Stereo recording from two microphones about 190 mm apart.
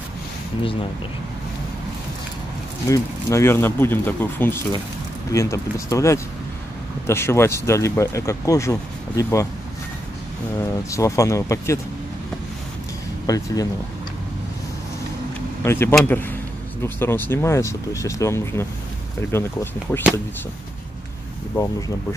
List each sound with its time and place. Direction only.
2.9 s speech: 15° left (ahead or behind)
10.6 s speech: 15° left (ahead or behind)
15.6 s speech: 10° left (ahead or behind)